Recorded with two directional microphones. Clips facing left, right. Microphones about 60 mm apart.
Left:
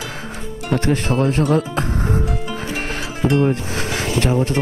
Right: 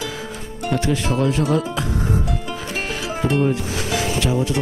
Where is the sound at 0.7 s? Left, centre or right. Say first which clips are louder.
Left 2 dB; left.